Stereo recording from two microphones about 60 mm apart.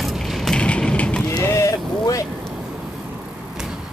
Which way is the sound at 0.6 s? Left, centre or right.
Centre.